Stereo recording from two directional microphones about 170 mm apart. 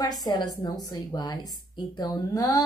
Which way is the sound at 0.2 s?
25° left (ahead or behind).